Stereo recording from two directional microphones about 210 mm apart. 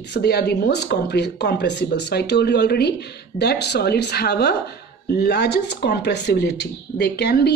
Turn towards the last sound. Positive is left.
turn(degrees=50)  # may be behind; listen again after turning